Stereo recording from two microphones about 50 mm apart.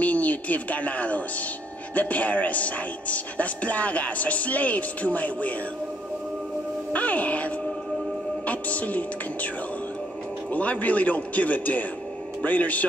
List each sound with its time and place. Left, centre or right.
0.0 s speech: left
6.9 s speech: left
10.5 s speech: left